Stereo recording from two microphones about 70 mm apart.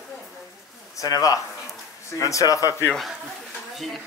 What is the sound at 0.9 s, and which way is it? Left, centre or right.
Speech, left.